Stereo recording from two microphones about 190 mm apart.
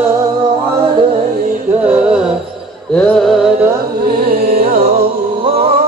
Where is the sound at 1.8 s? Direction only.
5° right (ahead or behind).